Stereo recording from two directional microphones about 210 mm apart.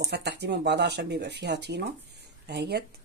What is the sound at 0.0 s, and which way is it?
Speech, 55° right (ahead or behind).